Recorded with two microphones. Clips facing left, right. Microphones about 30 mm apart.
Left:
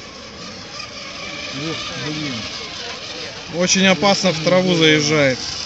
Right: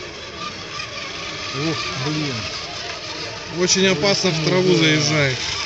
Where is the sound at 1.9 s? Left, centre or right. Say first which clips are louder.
Right 1 dB; right.